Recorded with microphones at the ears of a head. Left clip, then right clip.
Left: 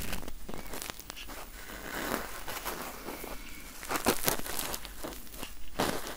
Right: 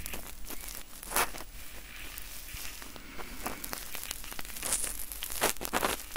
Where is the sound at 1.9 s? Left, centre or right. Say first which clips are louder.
Left 12 dB; left.